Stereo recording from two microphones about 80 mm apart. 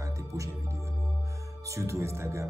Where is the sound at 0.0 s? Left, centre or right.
Right.